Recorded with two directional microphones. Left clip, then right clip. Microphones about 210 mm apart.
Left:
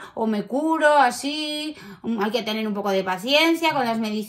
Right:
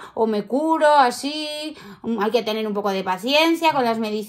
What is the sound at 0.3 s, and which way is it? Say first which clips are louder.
Speech: right 3 dB; 50° right (ahead or behind).